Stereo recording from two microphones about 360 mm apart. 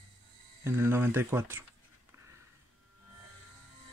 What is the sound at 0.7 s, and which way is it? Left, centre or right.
Speech, centre.